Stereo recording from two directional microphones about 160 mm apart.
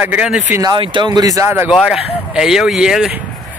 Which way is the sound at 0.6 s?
25° right (ahead or behind).